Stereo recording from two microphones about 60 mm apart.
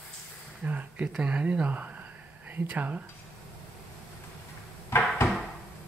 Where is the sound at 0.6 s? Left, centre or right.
Right.